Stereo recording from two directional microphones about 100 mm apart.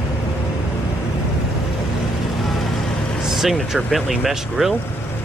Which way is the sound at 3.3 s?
5° right (ahead or behind).